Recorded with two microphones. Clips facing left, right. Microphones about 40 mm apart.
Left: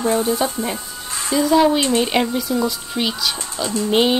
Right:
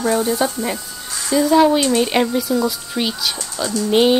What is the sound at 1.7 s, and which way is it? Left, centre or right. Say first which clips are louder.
Speech: right 2 dB; left.